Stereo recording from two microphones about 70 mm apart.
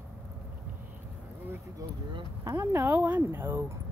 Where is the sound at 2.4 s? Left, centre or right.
Right.